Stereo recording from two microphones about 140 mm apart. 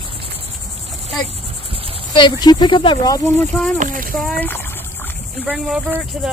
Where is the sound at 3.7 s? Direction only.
75° right (ahead or behind).